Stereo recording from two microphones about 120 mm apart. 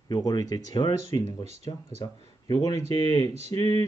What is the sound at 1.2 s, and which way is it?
Speech, 65° right (ahead or behind).